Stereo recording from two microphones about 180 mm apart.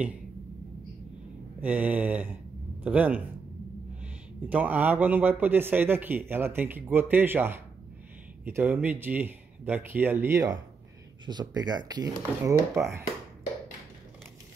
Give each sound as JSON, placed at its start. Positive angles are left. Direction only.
{"t": 1.6, "sound": "speech", "side_deg": -10}
{"t": 4.5, "sound": "speech", "side_deg": -10}